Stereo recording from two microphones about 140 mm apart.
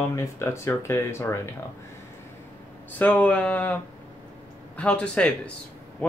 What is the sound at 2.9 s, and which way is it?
Speech, 10° left (ahead or behind).